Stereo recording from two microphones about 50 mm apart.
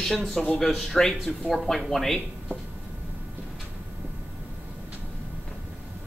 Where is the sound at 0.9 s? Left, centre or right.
Centre.